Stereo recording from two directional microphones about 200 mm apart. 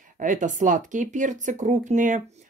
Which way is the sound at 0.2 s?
40° right (ahead or behind).